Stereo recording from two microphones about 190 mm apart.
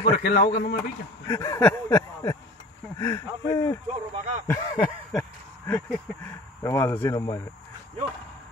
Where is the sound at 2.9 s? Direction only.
15° left (ahead or behind).